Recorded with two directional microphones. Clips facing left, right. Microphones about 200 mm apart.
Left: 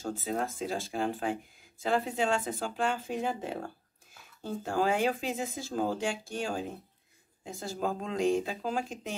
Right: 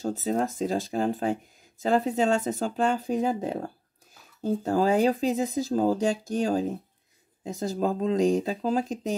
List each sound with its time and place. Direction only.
0.0 s speech: 40° right (ahead or behind)